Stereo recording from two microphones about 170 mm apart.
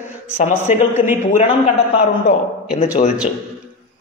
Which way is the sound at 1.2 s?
40° left (ahead or behind).